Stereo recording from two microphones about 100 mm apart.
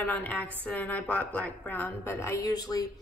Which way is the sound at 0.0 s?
15° left (ahead or behind).